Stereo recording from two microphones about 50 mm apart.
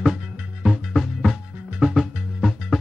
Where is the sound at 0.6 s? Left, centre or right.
Centre.